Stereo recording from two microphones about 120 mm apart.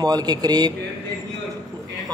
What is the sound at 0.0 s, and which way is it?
Speech, 35° right (ahead or behind).